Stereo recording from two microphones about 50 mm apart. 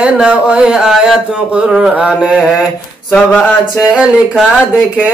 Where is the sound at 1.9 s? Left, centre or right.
Centre.